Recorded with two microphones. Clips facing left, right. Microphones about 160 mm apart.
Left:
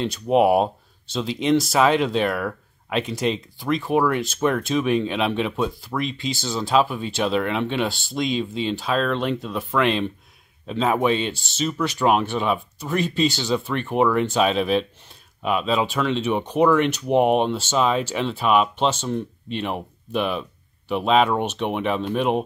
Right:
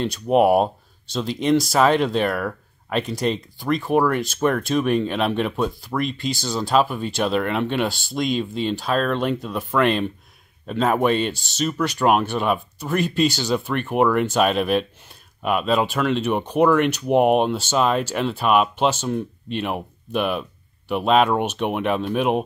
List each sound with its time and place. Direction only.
0.0 s speech: centre (ahead or behind)